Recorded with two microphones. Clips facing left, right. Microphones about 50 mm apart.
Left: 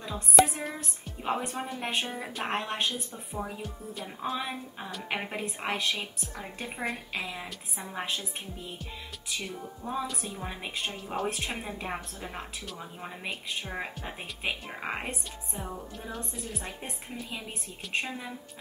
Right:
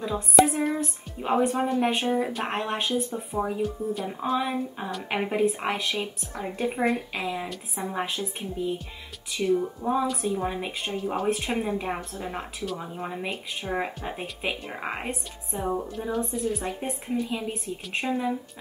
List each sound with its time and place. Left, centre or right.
0.0 s a woman's voice: centre
9.5 s a woman's voice: centre
15.6 s a woman's voice: right
16.0 s a woman's voice: centre